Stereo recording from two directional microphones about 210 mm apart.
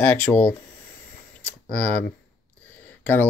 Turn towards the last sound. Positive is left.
turn(degrees=10)  # may be behind; listen again after turning